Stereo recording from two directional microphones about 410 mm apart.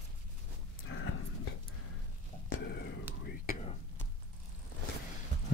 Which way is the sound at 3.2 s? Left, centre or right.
Left.